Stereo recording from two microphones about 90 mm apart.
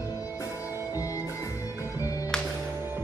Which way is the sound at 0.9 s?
40° left (ahead or behind).